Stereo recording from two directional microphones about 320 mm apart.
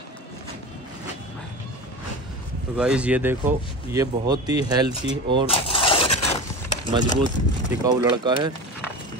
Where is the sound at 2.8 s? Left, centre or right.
Centre.